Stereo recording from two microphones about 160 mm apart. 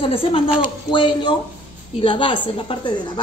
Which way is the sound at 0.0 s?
35° left (ahead or behind).